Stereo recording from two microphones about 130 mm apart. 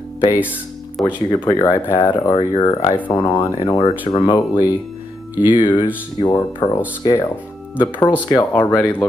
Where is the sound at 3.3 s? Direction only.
35° left (ahead or behind).